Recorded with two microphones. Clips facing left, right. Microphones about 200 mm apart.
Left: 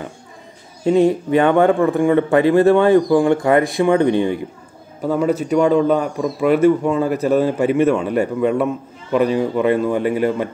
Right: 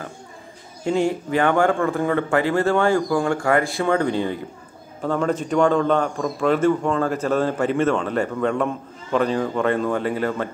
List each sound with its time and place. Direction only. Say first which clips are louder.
0.8 s speech: left 7 dB; 20° left (ahead or behind)
5.0 s a man's voice: left 4 dB; 10° left (ahead or behind)